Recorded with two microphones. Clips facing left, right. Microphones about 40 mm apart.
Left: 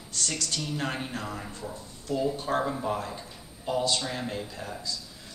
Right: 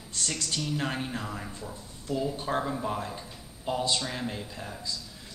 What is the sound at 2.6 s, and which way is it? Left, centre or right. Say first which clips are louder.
A man's voice: left 2 dB; centre.